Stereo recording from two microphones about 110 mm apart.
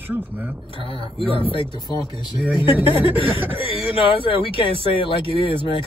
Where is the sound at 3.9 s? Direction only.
60° left (ahead or behind).